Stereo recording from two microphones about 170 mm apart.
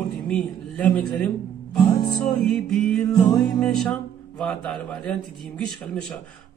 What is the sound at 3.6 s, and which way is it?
Music, 5° left (ahead or behind).